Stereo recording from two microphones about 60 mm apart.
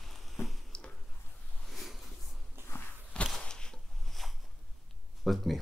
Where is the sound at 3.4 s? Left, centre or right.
Centre.